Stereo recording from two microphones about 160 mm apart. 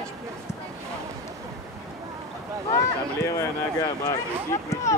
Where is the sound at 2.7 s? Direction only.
20° left (ahead or behind).